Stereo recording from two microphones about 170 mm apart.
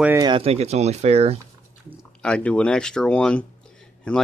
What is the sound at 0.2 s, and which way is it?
Speech, 30° right (ahead or behind).